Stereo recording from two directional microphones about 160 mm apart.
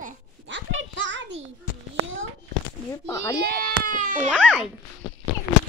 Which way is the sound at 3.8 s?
55° right (ahead or behind).